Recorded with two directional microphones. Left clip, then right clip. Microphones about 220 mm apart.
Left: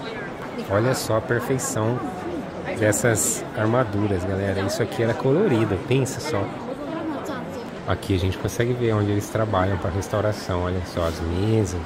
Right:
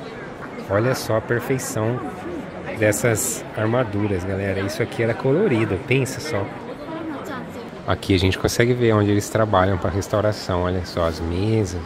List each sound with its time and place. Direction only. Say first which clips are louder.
0.7 s speech: right 1 dB; 15° right (ahead or behind)
7.9 s speech: right 5 dB; 20° right (ahead or behind)